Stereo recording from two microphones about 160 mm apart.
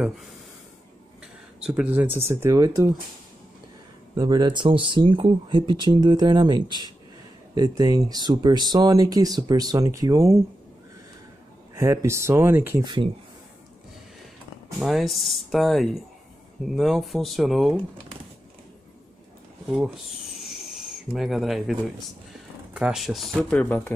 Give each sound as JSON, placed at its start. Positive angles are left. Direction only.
{"t": 1.6, "sound": "speech", "side_deg": -5}
{"t": 4.2, "sound": "speech", "side_deg": -30}
{"t": 11.7, "sound": "speech", "side_deg": -20}
{"t": 12.8, "sound": "speech", "side_deg": -30}
{"t": 14.8, "sound": "speech", "side_deg": 0}
{"t": 20.4, "sound": "a sound", "side_deg": 0}
{"t": 22.8, "sound": "speech", "side_deg": -5}